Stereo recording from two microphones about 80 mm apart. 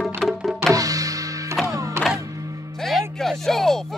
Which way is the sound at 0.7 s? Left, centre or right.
Right.